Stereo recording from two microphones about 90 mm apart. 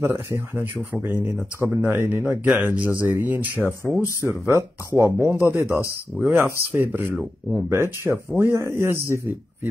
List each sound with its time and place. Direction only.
0.0 s speech: 25° right (ahead or behind)
4.6 s speech: 30° right (ahead or behind)
5.6 s speech: 35° left (ahead or behind)
6.2 s speech: 25° right (ahead or behind)